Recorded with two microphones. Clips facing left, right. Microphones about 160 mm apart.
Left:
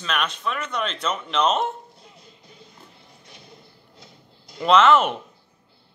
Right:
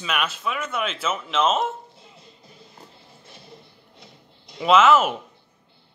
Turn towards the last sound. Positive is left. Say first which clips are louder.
# even
turn(degrees=-5)  # may be behind; listen again after turning